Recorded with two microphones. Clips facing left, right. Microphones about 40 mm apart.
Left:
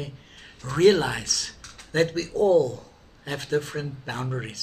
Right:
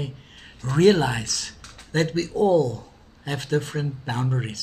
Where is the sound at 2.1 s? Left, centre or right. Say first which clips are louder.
Right 1 dB; right.